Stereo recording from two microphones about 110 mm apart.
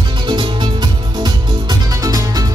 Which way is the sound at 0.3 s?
45° right (ahead or behind).